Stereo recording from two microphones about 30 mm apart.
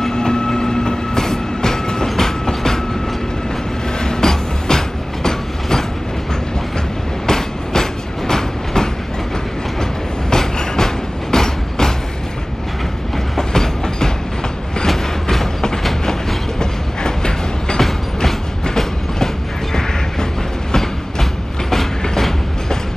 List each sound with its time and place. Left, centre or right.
0.1 s train: left
4.0 s train: left
7.2 s train: centre
10.3 s train: centre
13.4 s train: left
15.2 s train: centre
17.7 s train: centre
20.7 s train: centre